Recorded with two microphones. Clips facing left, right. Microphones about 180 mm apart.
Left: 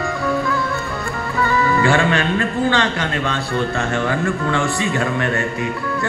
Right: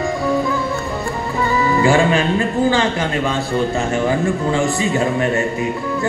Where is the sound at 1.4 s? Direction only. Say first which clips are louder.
Even; 20° right (ahead or behind).